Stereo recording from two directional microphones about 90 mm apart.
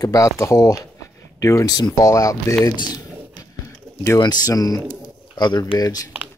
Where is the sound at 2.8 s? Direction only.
45° left (ahead or behind).